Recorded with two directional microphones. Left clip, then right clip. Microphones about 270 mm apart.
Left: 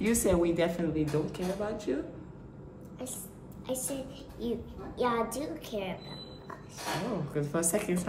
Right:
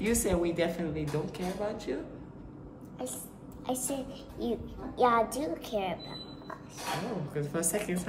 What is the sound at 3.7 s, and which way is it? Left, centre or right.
Speech, right.